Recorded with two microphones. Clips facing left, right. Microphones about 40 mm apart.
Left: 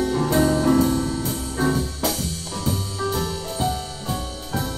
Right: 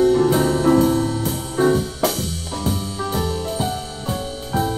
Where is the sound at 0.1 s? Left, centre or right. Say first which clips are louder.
Right 3 dB; centre.